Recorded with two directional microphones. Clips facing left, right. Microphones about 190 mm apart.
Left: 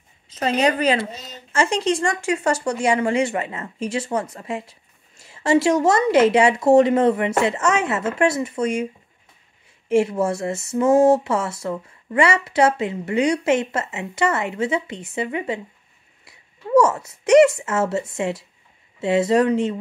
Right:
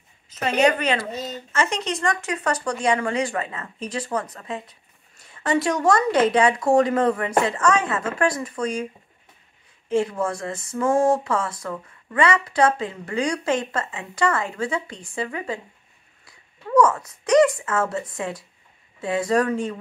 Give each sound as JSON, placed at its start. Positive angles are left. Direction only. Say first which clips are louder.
{"t": 0.3, "sound": "a woman's voice", "louder": "even", "side_deg": 35}
{"t": 9.8, "sound": "a woman's voice", "louder": "left 4 dB", "side_deg": 25}